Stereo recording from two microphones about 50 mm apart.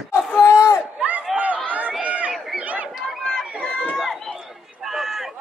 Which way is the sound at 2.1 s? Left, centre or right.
Right.